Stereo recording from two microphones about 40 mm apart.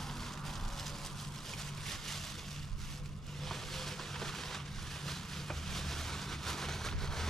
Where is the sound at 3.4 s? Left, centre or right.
Centre.